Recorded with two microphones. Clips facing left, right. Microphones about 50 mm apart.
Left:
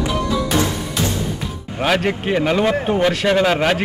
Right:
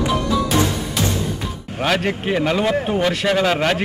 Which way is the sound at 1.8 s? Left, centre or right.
Centre.